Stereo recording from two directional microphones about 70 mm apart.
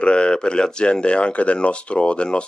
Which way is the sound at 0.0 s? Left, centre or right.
Centre.